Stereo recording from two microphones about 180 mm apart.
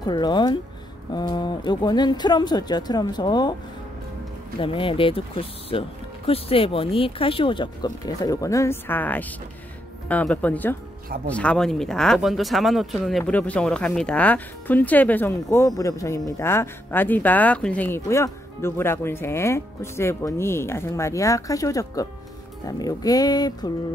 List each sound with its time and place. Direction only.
0.0 s speech: 25° left (ahead or behind)
4.6 s speech: 30° left (ahead or behind)